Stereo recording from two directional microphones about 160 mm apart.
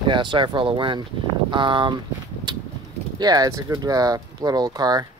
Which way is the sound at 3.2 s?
25° right (ahead or behind).